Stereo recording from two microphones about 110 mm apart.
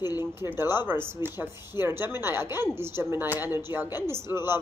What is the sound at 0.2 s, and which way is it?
Speech, 20° right (ahead or behind).